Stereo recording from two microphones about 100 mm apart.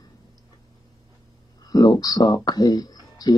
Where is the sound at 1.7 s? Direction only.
45° left (ahead or behind).